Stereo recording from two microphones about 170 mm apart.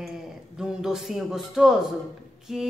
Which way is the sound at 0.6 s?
5° right (ahead or behind).